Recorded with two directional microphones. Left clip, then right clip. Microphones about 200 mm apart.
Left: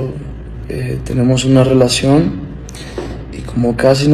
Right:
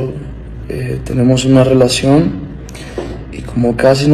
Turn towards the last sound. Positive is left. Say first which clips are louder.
# right 1 dB
turn(degrees=0)  # may be behind; listen again after turning